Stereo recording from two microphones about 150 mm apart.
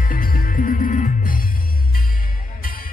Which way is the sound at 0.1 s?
75° left (ahead or behind).